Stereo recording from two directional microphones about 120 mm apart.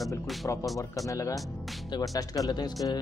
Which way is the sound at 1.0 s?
30° left (ahead or behind).